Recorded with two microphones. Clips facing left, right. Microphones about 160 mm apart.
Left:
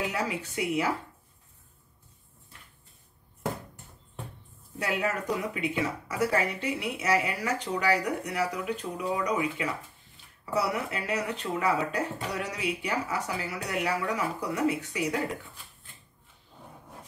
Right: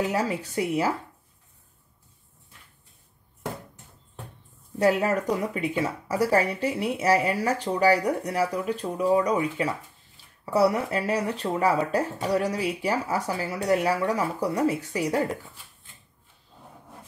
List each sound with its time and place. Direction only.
0.1 s speech: 35° right (ahead or behind)
4.7 s speech: 40° right (ahead or behind)